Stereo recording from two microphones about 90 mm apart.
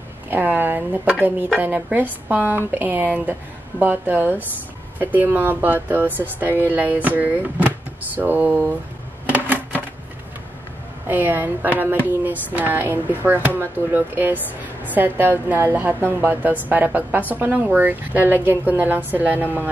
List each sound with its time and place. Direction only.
0.3 s speech: 20° right (ahead or behind)
9.3 s a sound: 15° right (ahead or behind)
11.1 s speech: 20° right (ahead or behind)